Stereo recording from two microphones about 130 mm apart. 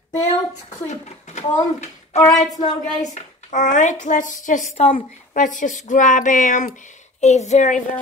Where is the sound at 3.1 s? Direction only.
70° left (ahead or behind).